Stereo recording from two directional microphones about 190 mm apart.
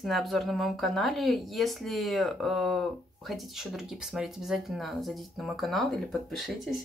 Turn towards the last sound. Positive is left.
turn(degrees=0)  # may be behind; listen again after turning